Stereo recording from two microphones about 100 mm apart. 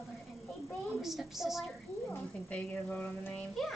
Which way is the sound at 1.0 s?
5° right (ahead or behind).